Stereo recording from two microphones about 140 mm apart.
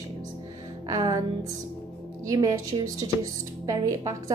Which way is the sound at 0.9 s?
25° right (ahead or behind).